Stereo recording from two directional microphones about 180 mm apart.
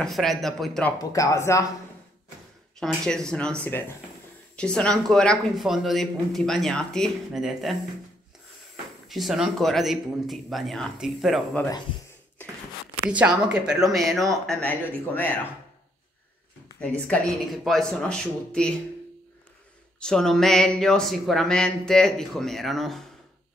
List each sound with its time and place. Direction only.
0.0 s speech: centre (ahead or behind)
0.9 s speech: 20° left (ahead or behind)
2.8 s speech: 5° left (ahead or behind)
9.0 s speech: centre (ahead or behind)
13.1 s speech: 5° right (ahead or behind)
17.1 s speech: centre (ahead or behind)
20.0 s speech: 5° left (ahead or behind)